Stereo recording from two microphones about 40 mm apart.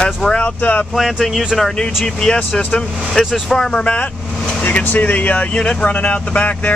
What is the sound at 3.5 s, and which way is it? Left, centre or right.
Speech, centre.